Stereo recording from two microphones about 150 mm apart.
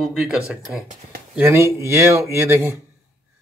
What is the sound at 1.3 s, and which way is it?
Speech, 15° right (ahead or behind).